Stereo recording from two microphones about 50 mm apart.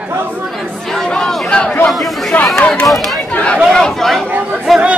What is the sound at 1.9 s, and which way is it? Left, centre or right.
Chatter, centre.